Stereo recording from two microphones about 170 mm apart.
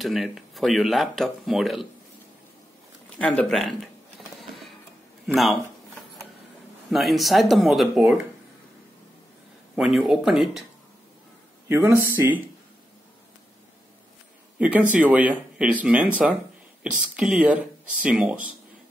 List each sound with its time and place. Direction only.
0.0 s speech: centre (ahead or behind)
3.2 s speech: 5° left (ahead or behind)
5.2 s speech: centre (ahead or behind)
6.9 s speech: centre (ahead or behind)
9.8 s speech: centre (ahead or behind)
11.7 s speech: 15° right (ahead or behind)
14.6 s speech: 10° right (ahead or behind)
17.1 s speech: 5° right (ahead or behind)